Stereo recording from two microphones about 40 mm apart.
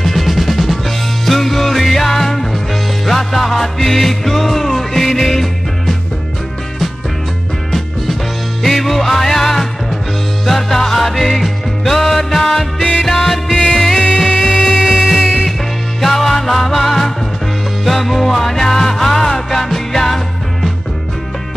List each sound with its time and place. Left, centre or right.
0.0 s music: centre
8.6 s music: centre